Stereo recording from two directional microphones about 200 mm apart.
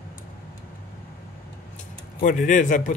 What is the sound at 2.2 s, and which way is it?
Speech, 40° left (ahead or behind).